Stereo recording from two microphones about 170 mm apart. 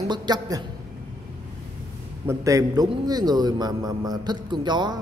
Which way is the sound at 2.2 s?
20° right (ahead or behind).